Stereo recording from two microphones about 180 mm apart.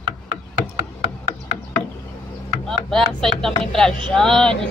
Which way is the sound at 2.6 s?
5° left (ahead or behind).